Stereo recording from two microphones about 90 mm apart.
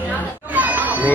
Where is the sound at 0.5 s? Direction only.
15° right (ahead or behind).